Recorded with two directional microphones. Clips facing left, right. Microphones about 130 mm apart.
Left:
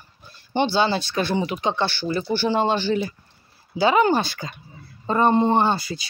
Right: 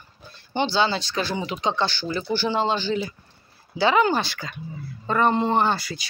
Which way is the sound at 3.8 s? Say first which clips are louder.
Left 2 dB; 25° left (ahead or behind).